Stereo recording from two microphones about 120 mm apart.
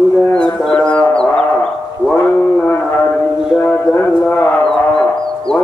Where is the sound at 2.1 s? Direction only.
15° left (ahead or behind).